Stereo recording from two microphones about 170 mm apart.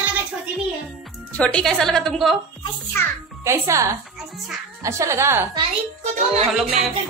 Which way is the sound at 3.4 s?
15° right (ahead or behind).